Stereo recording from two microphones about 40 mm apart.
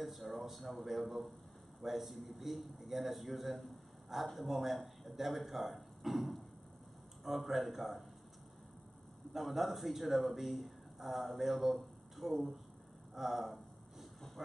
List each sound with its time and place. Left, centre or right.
0.0 s speech: centre
9.3 s speech: centre
13.1 s a sound: centre